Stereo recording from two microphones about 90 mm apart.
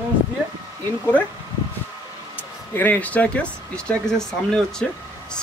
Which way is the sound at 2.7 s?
20° left (ahead or behind).